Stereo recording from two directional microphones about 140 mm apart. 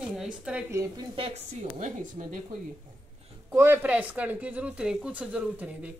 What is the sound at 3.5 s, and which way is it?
Speech, 15° right (ahead or behind).